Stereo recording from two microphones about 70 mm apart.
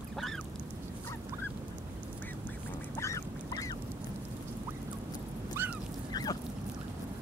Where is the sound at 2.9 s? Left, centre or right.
Left.